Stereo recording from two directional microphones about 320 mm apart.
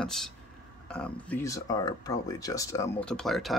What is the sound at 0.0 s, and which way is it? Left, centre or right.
Speech, centre.